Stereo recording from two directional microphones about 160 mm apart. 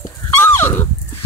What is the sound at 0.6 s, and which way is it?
Dog, 15° left (ahead or behind).